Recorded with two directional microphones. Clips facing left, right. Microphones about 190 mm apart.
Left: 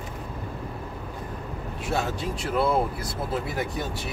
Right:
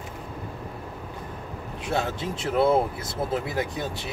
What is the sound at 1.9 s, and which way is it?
Speech, 20° right (ahead or behind).